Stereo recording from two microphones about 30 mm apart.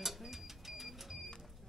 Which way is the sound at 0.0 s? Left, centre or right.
Centre.